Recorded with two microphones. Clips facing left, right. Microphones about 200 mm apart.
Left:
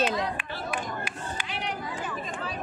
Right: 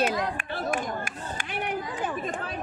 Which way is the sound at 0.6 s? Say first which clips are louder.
Right 4 dB; 50° right (ahead or behind).